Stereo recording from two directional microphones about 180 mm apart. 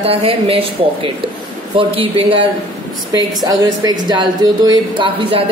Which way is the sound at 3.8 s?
20° right (ahead or behind).